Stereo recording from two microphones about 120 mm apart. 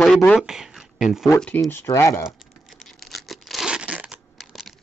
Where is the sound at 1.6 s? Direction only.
20° left (ahead or behind).